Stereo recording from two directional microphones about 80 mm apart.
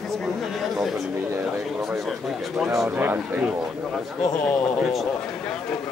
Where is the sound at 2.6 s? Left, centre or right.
Right.